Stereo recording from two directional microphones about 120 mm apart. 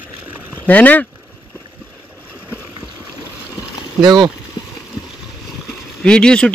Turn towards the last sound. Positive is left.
turn(degrees=5)  # may be behind; listen again after turning